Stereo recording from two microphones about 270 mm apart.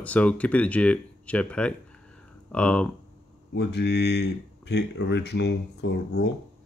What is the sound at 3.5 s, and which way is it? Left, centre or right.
Speech, left.